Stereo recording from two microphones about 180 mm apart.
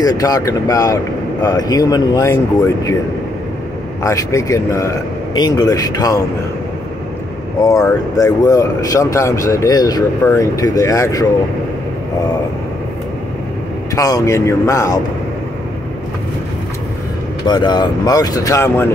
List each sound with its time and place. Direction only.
0.0 s speech: 20° left (ahead or behind)
4.0 s speech: 15° left (ahead or behind)
7.6 s speech: 20° left (ahead or behind)
13.9 s speech: 20° left (ahead or behind)
17.5 s speech: 25° left (ahead or behind)